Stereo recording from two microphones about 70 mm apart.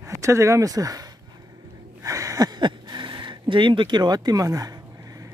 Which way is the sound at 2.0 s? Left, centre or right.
Right.